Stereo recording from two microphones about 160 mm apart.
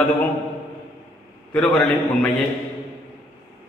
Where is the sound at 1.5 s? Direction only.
5° left (ahead or behind).